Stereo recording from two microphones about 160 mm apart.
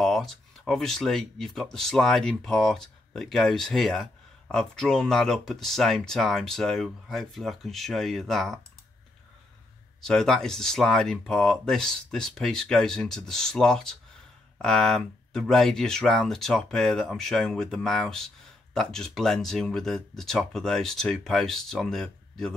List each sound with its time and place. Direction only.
0.0 s speech: centre (ahead or behind)
10.0 s speech: 5° left (ahead or behind)